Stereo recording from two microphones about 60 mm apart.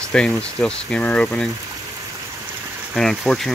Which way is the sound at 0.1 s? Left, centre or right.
Centre.